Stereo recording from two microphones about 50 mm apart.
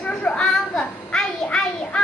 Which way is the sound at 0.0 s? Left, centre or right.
Left.